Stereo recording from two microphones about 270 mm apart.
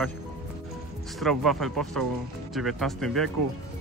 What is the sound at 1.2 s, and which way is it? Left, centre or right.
Speech, centre.